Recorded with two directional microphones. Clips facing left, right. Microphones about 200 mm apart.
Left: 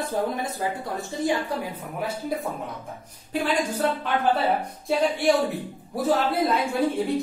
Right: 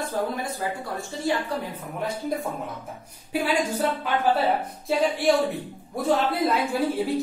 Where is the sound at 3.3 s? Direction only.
10° right (ahead or behind).